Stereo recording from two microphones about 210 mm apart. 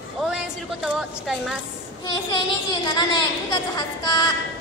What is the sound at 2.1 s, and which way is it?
Child singing, 20° left (ahead or behind).